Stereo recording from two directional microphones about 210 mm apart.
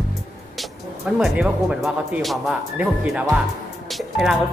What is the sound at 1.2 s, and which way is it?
Speech, 5° right (ahead or behind).